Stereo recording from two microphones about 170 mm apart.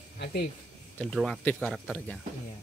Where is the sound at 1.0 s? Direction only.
Centre (ahead or behind).